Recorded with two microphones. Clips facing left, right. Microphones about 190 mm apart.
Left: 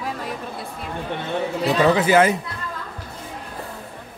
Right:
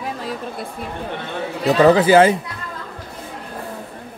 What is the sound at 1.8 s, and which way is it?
Speech, 30° right (ahead or behind).